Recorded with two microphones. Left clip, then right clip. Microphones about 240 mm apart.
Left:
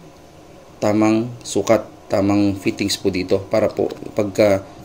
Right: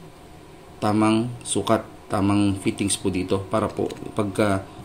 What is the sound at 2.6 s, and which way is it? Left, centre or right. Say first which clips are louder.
Speech: left 4 dB; right.